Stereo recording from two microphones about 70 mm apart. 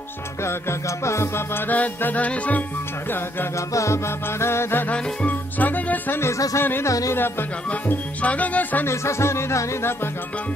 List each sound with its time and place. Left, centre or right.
0.4 s music: left
1.7 s speech: left
3.5 s music: left
4.9 s speech: left
6.3 s speech: left
6.6 s music: left
6.9 s speech: left
7.2 s music: left
7.7 s speech: left
8.8 s music: left